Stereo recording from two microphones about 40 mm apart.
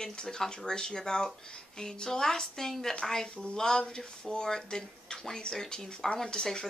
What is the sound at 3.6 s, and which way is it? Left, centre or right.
Speech, centre.